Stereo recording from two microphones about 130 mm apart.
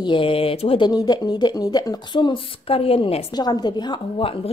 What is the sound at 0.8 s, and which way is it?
Speech, 30° left (ahead or behind).